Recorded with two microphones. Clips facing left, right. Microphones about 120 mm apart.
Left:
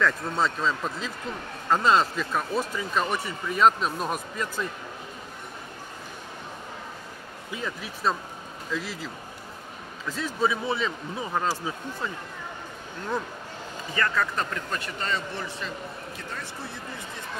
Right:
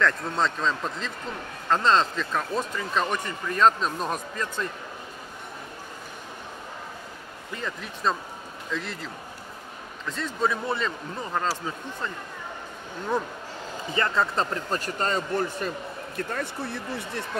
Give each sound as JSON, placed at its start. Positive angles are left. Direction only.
{"t": 0.0, "sound": "speech", "side_deg": 5}
{"t": 7.5, "sound": "speech", "side_deg": 5}
{"t": 13.9, "sound": "a man's voice", "side_deg": -25}